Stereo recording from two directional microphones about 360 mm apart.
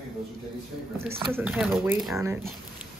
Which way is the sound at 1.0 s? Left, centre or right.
Centre.